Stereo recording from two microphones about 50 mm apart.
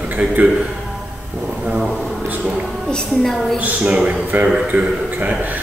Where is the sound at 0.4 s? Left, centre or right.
Right.